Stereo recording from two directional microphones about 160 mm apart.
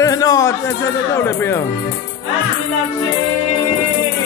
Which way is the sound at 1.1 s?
15° left (ahead or behind).